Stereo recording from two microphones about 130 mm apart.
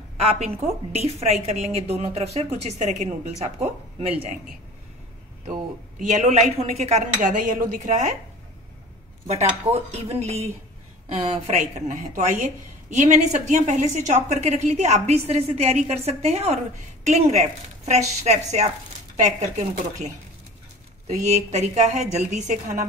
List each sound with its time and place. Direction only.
0.2 s a woman's voice: 55° right (ahead or behind)
5.5 s speech: 80° right
9.3 s a woman's voice: 55° right (ahead or behind)
21.3 s a woman's voice: 60° right (ahead or behind)